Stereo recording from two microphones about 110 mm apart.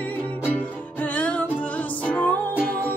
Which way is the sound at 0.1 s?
15° left (ahead or behind).